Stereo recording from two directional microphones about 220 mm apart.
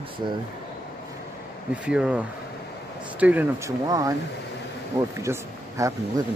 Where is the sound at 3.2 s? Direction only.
5° right (ahead or behind).